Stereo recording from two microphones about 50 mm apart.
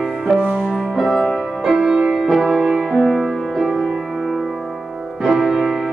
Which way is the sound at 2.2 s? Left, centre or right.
Centre.